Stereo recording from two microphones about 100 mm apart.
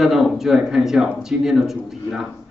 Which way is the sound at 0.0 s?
Centre (ahead or behind).